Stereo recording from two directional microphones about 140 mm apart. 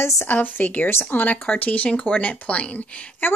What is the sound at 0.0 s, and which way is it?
Speech, 15° left (ahead or behind).